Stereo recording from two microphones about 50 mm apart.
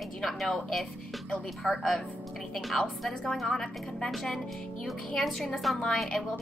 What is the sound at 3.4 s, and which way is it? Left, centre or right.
A woman's voice, centre.